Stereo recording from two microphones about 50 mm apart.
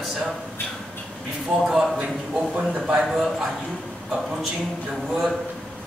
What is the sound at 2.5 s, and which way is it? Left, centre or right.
Speech, right.